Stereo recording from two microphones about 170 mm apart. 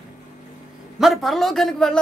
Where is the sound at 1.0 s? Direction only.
Centre (ahead or behind).